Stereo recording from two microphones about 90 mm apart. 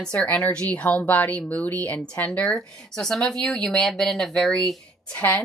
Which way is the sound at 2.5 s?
5° left (ahead or behind).